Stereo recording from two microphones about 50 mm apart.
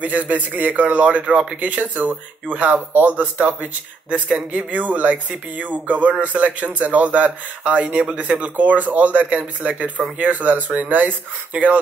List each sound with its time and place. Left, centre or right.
0.0 s speech: right